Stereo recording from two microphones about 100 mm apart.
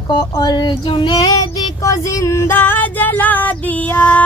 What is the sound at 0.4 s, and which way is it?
Child singing, 45° left (ahead or behind).